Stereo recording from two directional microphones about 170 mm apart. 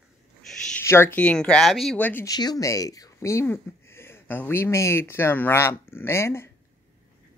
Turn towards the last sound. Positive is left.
turn(degrees=15)  # may be behind; listen again after turning